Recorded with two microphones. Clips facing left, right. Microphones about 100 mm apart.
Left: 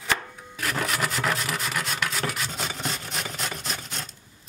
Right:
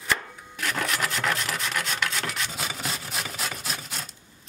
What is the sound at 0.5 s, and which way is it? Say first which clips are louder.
Rub: left 1 dB; centre (ahead or behind).